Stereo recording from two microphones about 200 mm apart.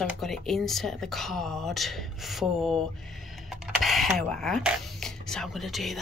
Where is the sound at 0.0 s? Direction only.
Centre (ahead or behind).